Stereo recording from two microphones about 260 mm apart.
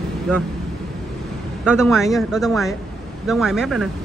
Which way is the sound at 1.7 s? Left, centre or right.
Centre.